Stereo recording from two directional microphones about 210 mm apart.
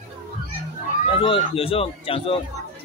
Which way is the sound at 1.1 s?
25° left (ahead or behind).